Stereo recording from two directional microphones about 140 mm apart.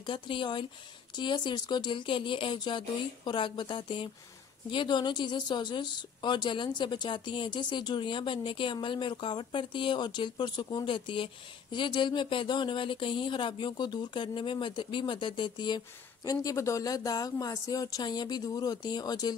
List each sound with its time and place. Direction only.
0.0 s speech: 35° left (ahead or behind)